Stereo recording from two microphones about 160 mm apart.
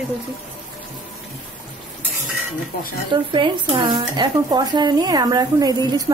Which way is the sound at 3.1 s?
30° right (ahead or behind).